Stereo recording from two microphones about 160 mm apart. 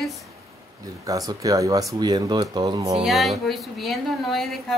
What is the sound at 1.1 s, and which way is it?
Speech, 20° right (ahead or behind).